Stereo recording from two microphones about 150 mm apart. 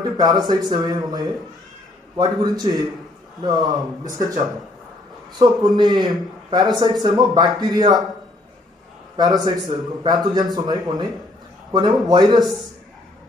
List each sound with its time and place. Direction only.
0.0 s a man's voice: 25° right (ahead or behind)
9.1 s a man's voice: 25° right (ahead or behind)